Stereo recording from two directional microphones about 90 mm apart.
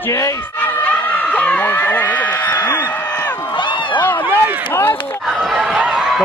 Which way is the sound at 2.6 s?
30° left (ahead or behind).